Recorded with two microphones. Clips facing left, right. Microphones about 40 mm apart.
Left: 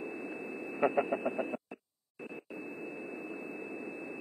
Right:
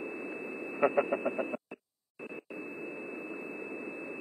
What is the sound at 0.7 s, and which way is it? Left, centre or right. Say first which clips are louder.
Speech: right 2 dB; centre.